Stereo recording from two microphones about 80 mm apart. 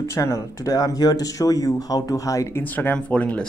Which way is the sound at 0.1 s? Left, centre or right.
Left.